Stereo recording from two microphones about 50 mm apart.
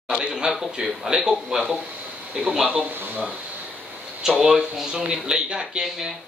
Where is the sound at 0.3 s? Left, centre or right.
Centre.